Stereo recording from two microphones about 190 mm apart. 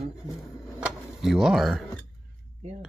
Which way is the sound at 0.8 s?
5° right (ahead or behind).